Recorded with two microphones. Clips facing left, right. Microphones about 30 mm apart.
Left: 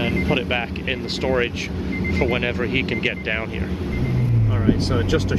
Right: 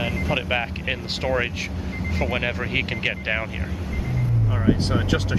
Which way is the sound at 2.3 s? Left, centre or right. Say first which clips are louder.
Left 3 dB; centre.